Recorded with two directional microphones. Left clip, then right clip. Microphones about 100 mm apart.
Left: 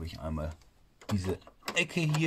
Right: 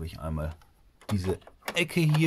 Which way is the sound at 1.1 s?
40° right (ahead or behind).